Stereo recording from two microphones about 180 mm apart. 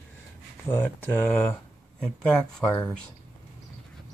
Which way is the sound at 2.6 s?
20° left (ahead or behind).